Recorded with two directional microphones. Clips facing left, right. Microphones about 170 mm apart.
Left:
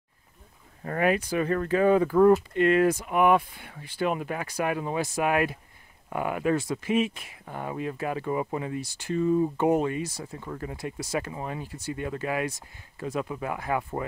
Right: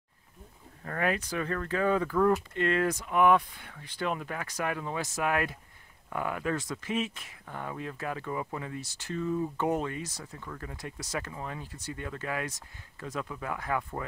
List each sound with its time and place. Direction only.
0.8 s speech: 15° left (ahead or behind)
2.0 s speech: 25° left (ahead or behind)
2.5 s speech: 10° left (ahead or behind)
10.2 s speech: 25° left (ahead or behind)